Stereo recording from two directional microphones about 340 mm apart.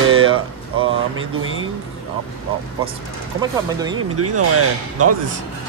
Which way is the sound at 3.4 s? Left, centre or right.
Centre.